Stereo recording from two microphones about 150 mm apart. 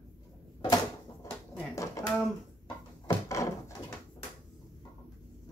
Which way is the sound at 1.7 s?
20° left (ahead or behind).